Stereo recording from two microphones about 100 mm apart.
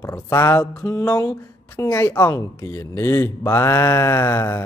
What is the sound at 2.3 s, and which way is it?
Speech, 35° left (ahead or behind).